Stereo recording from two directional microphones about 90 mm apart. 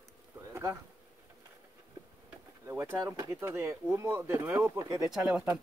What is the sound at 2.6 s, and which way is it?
Speech, 30° right (ahead or behind).